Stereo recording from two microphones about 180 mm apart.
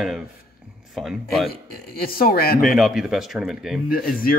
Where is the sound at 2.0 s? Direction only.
55° left (ahead or behind).